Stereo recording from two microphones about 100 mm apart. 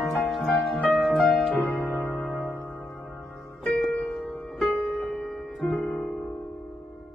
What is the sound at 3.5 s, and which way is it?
Music, centre (ahead or behind).